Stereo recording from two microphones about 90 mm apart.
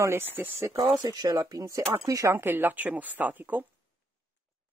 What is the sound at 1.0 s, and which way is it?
Speech, 45° right (ahead or behind).